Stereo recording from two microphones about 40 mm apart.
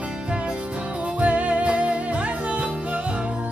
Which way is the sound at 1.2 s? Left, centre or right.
Right.